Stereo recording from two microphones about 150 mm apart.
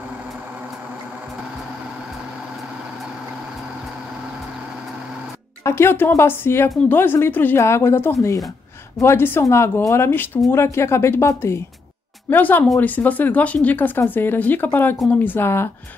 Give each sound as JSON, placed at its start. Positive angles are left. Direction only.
{"t": 5.6, "sound": "speech", "side_deg": 15}